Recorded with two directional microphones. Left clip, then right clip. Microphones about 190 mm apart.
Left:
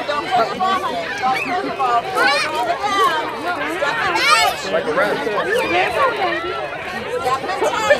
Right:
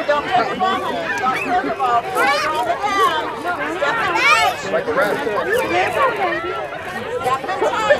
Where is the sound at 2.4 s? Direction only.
10° right (ahead or behind).